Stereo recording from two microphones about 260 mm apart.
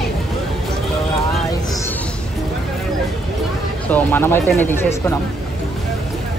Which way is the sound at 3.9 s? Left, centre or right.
Centre.